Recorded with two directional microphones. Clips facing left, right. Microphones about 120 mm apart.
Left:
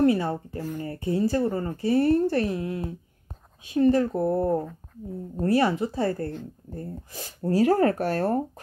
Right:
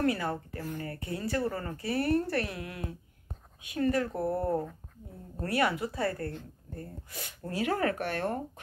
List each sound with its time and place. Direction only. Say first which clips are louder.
0.0 s speech: left 8 dB; 25° left (ahead or behind)